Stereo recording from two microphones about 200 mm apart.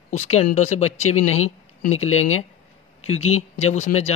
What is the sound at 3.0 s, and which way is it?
Speech, 30° left (ahead or behind).